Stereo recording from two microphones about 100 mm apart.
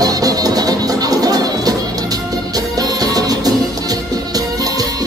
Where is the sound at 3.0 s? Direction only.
40° right (ahead or behind).